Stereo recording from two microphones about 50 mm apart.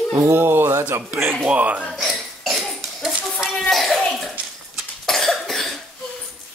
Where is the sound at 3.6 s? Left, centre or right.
Centre.